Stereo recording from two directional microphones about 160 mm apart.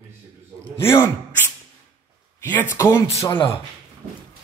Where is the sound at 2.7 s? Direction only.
20° left (ahead or behind).